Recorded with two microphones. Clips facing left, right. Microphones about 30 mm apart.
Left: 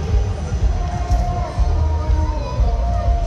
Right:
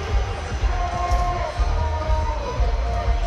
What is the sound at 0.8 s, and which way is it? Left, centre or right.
Music, right.